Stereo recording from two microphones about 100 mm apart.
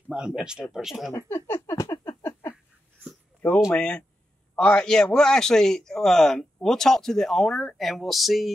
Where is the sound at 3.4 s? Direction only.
20° left (ahead or behind).